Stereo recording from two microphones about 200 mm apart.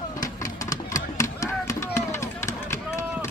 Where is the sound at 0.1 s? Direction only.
15° left (ahead or behind).